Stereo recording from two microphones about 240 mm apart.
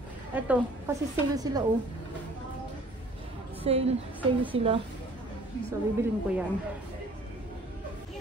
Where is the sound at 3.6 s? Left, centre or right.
Right.